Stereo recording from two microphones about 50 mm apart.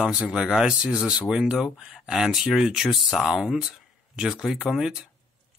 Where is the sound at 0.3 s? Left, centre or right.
Centre.